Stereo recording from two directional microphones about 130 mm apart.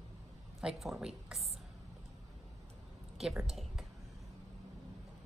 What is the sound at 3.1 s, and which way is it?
Speech, 5° right (ahead or behind).